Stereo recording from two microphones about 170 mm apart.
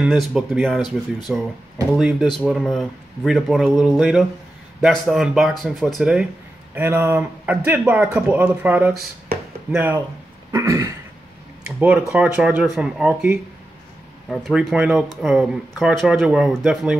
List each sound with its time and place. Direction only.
0.0 s speech: centre (ahead or behind)
10.5 s throat clearing: 20° right (ahead or behind)
11.6 s speech: 5° right (ahead or behind)